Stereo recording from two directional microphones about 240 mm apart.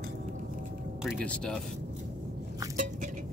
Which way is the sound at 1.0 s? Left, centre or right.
Centre.